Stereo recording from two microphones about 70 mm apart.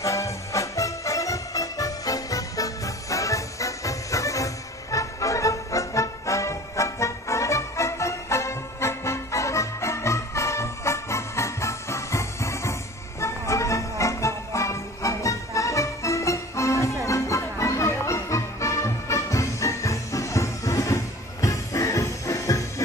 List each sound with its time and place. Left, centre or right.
0.0 s music: left